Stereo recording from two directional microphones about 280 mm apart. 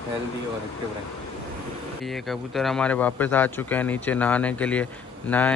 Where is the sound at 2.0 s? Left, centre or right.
Centre.